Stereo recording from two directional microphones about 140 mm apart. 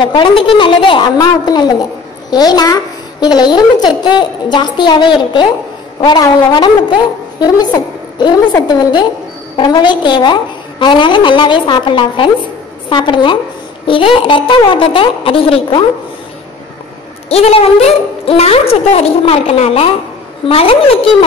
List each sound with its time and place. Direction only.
0.0 s a child's voice: 35° left (ahead or behind)
17.3 s a woman's voice: 45° left (ahead or behind)